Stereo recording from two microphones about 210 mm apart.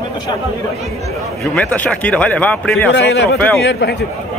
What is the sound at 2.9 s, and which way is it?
A man's voice, 50° left (ahead or behind).